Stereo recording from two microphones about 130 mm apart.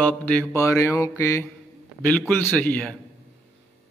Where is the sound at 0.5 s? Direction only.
20° left (ahead or behind).